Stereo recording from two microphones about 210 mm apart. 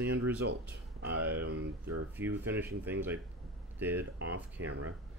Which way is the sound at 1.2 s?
50° right (ahead or behind).